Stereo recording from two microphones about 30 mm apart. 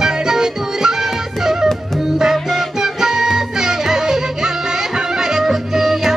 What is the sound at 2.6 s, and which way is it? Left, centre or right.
Music, centre.